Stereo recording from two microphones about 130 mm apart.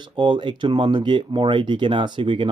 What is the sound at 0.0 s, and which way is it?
Speech, 35° right (ahead or behind).